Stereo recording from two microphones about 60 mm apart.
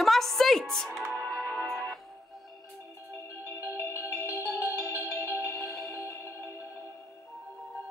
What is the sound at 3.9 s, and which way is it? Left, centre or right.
Marimba, left.